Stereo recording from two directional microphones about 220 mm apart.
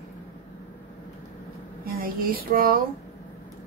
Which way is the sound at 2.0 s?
40° right (ahead or behind).